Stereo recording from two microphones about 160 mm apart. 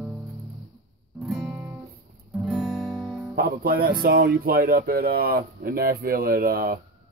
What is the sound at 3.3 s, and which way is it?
Speech, 70° right (ahead or behind).